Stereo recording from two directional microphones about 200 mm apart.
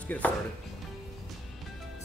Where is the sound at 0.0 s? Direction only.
5° left (ahead or behind).